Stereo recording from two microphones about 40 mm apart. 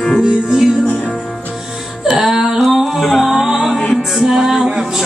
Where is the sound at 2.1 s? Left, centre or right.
Centre.